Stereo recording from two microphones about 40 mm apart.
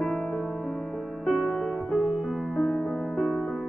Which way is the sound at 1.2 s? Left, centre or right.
Centre.